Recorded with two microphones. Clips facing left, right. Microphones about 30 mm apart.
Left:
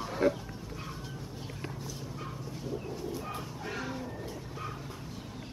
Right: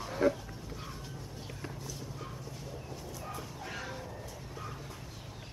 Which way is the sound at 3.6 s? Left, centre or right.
Centre.